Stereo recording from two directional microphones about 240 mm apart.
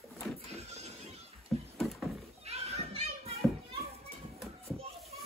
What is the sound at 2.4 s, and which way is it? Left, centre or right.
Children playing, right.